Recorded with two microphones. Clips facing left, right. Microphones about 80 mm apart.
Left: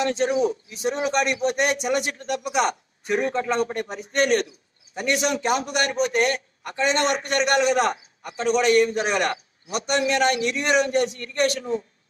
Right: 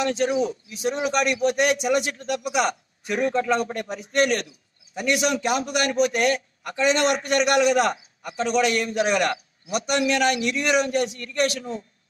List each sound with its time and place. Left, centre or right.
0.0 s a man's voice: left